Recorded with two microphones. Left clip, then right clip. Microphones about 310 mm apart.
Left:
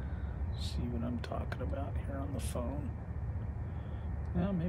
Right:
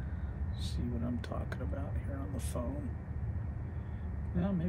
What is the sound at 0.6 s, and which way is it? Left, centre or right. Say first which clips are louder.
Speech: even; centre.